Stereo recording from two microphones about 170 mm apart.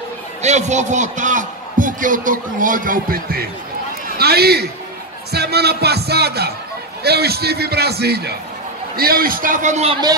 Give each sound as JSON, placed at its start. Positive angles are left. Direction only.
{"t": 0.4, "sound": "a man's voice", "side_deg": -40}